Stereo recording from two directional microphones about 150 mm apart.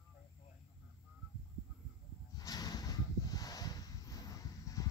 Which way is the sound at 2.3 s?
25° left (ahead or behind).